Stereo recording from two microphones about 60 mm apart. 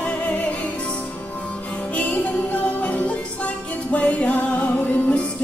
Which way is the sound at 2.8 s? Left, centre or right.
Left.